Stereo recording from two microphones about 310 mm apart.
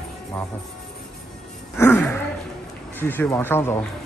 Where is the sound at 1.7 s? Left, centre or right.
Centre.